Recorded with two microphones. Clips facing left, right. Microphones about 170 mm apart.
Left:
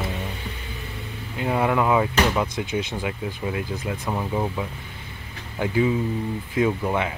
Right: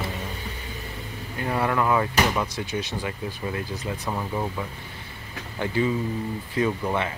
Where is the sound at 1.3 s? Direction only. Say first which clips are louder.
Left 3 dB; 15° left (ahead or behind).